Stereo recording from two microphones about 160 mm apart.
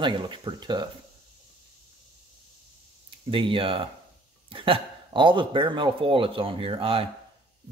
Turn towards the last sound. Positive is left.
turn(degrees=-35)  # may be behind; listen again after turning